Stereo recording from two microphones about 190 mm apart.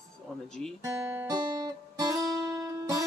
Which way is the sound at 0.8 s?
15° right (ahead or behind).